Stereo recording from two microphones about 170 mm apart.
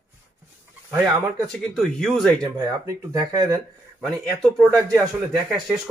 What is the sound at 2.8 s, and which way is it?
Speech, 20° right (ahead or behind).